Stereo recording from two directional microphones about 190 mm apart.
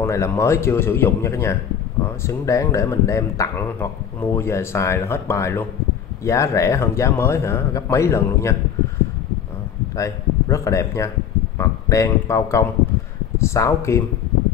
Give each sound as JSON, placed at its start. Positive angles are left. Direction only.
{"t": 0.0, "sound": "speech", "side_deg": 15}
{"t": 9.9, "sound": "speech", "side_deg": 15}